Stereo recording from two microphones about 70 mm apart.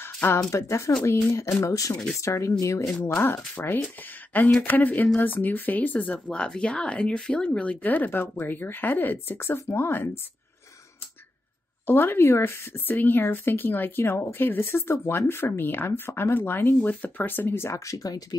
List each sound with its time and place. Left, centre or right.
0.0 s speech: left
3.5 s speech: left
11.8 s speech: left